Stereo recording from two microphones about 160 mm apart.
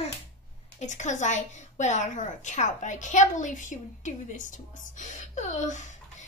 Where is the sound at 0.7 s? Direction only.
50° left (ahead or behind).